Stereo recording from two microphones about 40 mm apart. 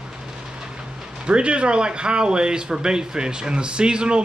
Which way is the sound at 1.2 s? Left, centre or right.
Right.